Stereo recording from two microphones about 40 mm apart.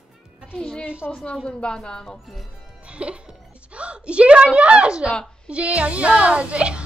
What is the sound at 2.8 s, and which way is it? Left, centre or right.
A woman's voice, right.